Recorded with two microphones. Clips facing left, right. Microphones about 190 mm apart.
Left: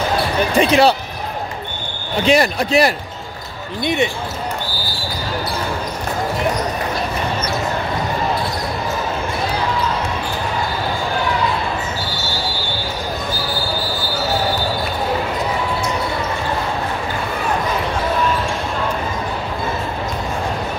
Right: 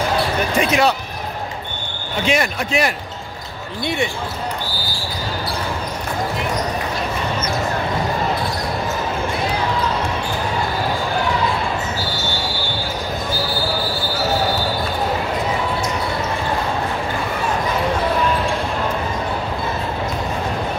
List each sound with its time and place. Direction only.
0.6 s speech: 30° left (ahead or behind)
2.2 s speech: 35° left (ahead or behind)
3.8 s speech: 20° left (ahead or behind)